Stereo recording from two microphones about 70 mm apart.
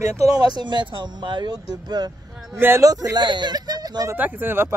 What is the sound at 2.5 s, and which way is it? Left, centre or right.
Speech, right.